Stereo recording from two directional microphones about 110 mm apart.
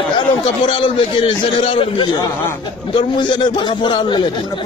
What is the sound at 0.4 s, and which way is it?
A man's voice, 50° left (ahead or behind).